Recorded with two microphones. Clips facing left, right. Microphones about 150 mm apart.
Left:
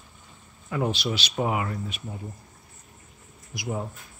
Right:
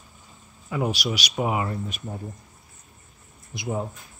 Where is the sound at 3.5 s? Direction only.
25° right (ahead or behind).